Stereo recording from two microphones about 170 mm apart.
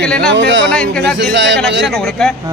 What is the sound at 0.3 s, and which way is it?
Speech, 90° right.